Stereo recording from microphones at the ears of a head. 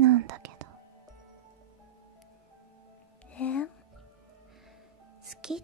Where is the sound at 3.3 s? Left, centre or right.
Left.